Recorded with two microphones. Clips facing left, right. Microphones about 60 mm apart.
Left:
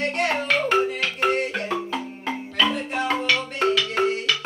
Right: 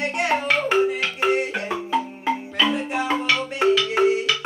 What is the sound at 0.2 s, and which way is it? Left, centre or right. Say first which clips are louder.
Music: right 2 dB; centre.